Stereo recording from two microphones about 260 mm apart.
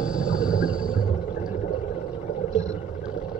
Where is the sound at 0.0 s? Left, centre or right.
Centre.